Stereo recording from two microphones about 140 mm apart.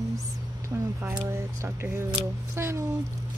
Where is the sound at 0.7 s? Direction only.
20° right (ahead or behind).